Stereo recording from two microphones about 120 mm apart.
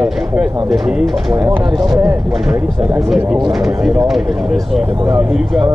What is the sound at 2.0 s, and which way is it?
Speech, 5° right (ahead or behind).